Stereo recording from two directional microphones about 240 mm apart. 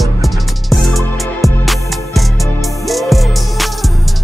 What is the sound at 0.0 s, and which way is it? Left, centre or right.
Music, centre.